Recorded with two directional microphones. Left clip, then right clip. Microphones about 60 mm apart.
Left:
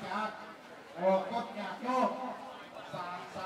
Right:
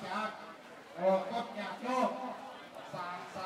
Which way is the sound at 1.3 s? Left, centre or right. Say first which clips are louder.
Left 1 dB; centre.